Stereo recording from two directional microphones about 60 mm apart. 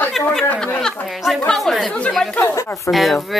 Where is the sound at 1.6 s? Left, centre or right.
Centre.